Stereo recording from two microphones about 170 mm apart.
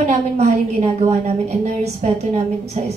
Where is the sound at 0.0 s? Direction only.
40° right (ahead or behind).